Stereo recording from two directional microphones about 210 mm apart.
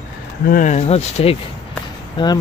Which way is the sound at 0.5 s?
35° left (ahead or behind).